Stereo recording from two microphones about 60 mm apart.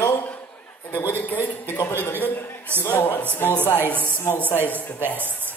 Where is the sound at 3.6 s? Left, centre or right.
Left.